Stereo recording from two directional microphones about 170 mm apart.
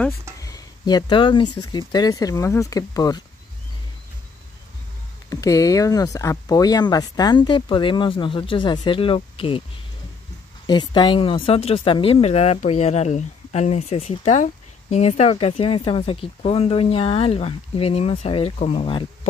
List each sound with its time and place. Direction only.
0.4 s speech: 20° left (ahead or behind)
5.3 s speech: 20° left (ahead or behind)
10.7 s speech: 25° left (ahead or behind)